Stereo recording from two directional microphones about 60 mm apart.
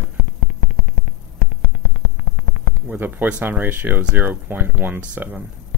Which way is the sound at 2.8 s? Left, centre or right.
Right.